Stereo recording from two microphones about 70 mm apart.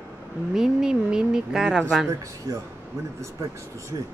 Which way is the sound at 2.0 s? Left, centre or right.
Right.